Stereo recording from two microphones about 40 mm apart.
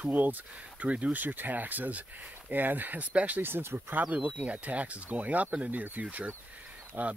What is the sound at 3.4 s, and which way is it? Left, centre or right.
Speech, right.